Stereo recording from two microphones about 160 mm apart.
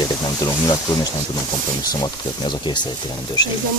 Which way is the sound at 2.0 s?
30° left (ahead or behind).